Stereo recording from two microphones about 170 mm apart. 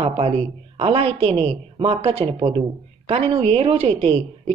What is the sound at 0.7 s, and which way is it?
A woman's voice, 35° right (ahead or behind).